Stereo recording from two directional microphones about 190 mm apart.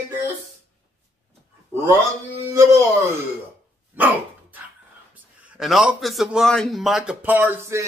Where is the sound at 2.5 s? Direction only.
15° right (ahead or behind).